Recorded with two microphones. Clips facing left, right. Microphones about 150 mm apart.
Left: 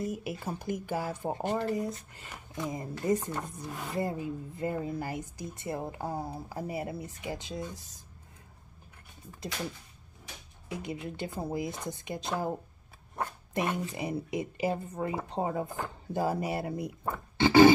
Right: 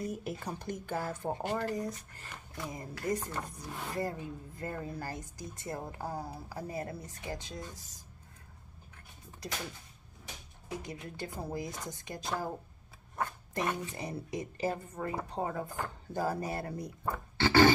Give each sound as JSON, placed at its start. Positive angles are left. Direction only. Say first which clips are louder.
{"t": 0.1, "sound": "speech", "louder": "left 2 dB", "side_deg": 5}
{"t": 1.5, "sound": "speech", "louder": "left 4 dB", "side_deg": 25}
{"t": 2.2, "sound": "speech", "louder": "left 5 dB", "side_deg": 10}
{"t": 2.7, "sound": "speech", "louder": "left 5 dB", "side_deg": 25}
{"t": 6.7, "sound": "speech", "louder": "left 3 dB", "side_deg": 10}
{"t": 10.9, "sound": "speech", "louder": "left 5 dB", "side_deg": 20}